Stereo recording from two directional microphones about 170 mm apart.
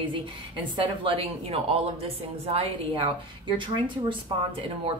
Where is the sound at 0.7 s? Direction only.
35° right (ahead or behind).